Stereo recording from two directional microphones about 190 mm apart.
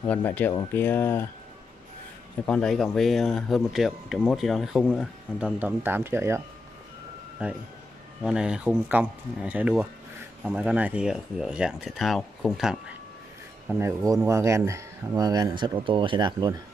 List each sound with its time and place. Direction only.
0.0 s speech: 10° left (ahead or behind)
2.4 s speech: 5° left (ahead or behind)
13.7 s speech: 15° right (ahead or behind)